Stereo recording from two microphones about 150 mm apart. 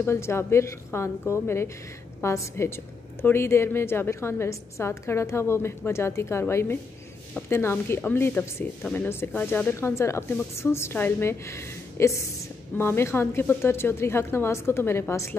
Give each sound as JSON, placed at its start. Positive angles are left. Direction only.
{"t": 0.0, "sound": "a woman's voice", "side_deg": 15}